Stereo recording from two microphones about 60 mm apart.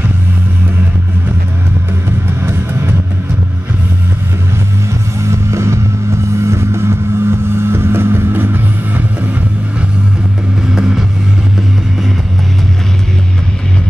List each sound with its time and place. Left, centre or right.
2.0 s music: right
5.2 s music: right
6.3 s vehicle: right
10.7 s vehicle: centre